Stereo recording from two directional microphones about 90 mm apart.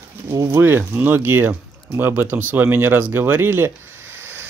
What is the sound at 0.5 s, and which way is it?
Speech, 25° right (ahead or behind).